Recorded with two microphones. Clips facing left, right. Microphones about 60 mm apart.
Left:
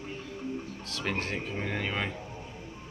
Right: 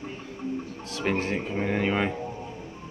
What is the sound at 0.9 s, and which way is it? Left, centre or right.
Speech, centre.